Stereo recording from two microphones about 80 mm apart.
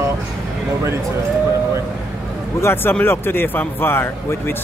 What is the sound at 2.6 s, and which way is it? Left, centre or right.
A man's voice, left.